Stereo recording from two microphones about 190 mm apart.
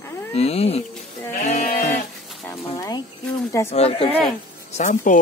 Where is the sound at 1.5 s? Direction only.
35° left (ahead or behind).